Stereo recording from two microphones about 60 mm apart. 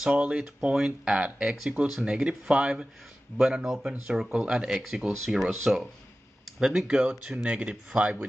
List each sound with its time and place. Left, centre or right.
0.3 s speech: centre